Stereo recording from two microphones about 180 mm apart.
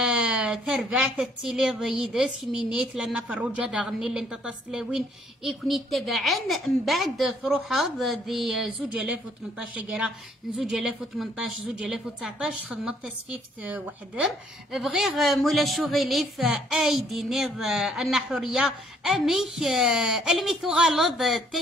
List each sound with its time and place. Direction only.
0.0 s a woman's voice: 5° right (ahead or behind)